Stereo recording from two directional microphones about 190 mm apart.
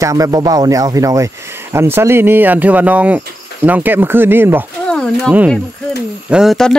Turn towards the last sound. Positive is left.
turn(degrees=0)  # may be behind; listen again after turning